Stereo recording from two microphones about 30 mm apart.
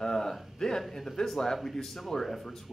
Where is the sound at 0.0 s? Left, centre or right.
Centre.